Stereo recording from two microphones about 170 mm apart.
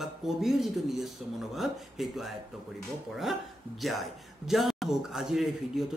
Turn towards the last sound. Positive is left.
turn(degrees=0)  # may be behind; listen again after turning